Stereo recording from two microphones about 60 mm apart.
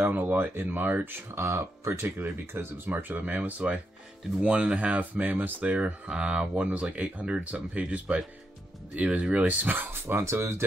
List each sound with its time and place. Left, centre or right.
0.0 s speech: right
1.3 s speech: right
2.9 s speech: right
9.8 s speech: right